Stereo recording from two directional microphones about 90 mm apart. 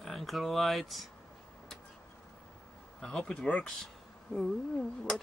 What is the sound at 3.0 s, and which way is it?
Speech, 10° left (ahead or behind).